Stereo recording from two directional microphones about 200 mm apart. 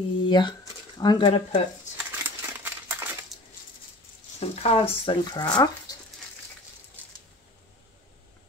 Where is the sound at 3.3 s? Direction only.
Centre (ahead or behind).